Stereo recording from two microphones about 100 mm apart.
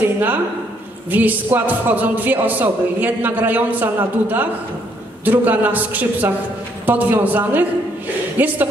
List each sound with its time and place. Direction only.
0.0 s speech: 20° right (ahead or behind)